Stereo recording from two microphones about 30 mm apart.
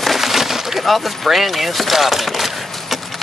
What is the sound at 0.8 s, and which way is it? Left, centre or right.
Speech, centre.